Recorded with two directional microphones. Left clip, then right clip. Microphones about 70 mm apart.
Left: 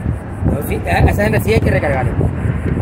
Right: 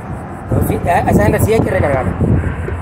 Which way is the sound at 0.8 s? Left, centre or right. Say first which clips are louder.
Right 3 dB; centre.